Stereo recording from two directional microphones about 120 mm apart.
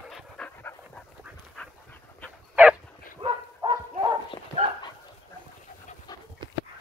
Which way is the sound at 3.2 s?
40° right (ahead or behind).